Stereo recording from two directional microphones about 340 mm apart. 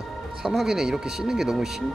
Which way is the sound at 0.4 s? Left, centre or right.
Centre.